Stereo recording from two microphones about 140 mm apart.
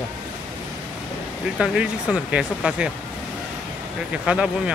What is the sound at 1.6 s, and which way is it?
Speech, 5° right (ahead or behind).